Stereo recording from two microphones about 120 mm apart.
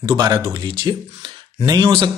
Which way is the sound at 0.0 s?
35° right (ahead or behind).